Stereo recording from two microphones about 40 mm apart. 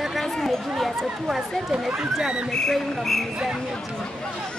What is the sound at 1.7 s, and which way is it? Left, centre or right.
Speech, right.